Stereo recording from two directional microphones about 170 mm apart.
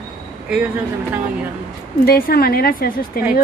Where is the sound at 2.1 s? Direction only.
60° left (ahead or behind).